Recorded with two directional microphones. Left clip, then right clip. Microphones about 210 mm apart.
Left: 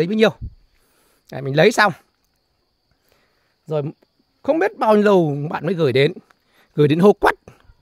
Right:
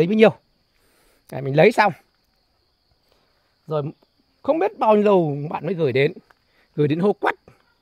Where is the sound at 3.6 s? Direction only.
20° left (ahead or behind).